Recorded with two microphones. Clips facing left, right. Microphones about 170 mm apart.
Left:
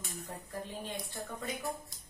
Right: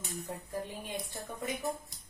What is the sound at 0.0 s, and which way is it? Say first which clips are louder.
Speech: right 3 dB; 20° right (ahead or behind).